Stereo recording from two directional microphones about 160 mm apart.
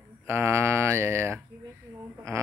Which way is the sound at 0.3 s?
15° right (ahead or behind).